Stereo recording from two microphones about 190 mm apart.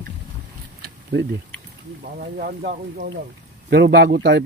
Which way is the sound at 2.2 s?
50° right (ahead or behind).